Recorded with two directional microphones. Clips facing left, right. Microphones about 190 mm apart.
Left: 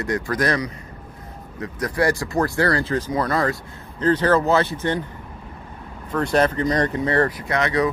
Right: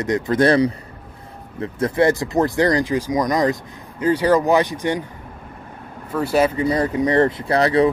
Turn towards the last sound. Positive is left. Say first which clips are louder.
# right 5 dB
turn(degrees=-30)  # may be behind; listen again after turning